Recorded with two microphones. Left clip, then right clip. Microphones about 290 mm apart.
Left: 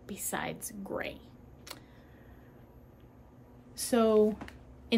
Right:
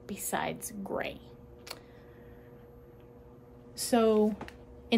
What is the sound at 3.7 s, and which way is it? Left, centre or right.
Speech, centre.